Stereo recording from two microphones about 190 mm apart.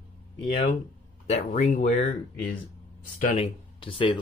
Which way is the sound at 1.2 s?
40° left (ahead or behind).